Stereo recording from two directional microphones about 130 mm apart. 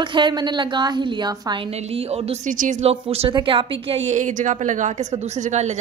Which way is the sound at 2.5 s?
90° right.